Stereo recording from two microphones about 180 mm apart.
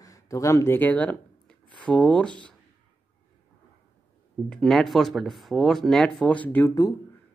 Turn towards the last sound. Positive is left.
turn(degrees=15)  # may be behind; listen again after turning